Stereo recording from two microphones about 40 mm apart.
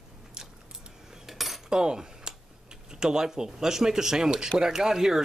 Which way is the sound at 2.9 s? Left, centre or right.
Centre.